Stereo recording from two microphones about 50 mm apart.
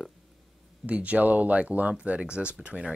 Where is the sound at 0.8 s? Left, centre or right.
Right.